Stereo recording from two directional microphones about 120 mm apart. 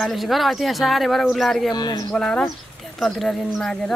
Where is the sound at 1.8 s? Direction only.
35° left (ahead or behind).